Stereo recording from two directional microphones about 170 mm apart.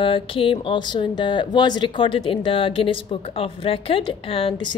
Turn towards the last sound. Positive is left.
turn(degrees=30)  # may be behind; listen again after turning